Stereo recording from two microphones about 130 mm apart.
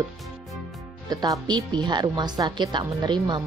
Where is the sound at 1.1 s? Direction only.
30° right (ahead or behind).